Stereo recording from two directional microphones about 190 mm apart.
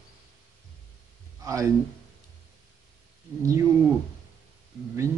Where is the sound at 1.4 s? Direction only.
15° right (ahead or behind).